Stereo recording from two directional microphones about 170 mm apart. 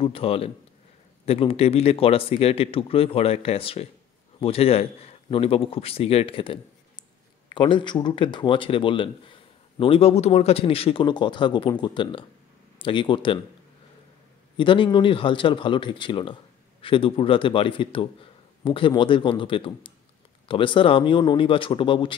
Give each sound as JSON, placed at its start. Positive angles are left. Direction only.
{"t": 0.0, "sound": "a man's voice", "side_deg": 35}
{"t": 14.6, "sound": "a man's voice", "side_deg": 30}